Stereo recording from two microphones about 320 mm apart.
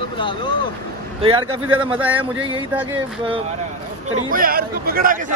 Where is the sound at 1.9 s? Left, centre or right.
Centre.